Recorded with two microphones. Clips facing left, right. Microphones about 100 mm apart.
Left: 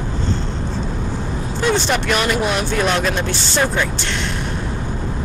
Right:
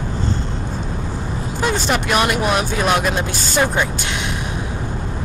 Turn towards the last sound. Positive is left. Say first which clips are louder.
# even
turn(degrees=-5)  # may be behind; listen again after turning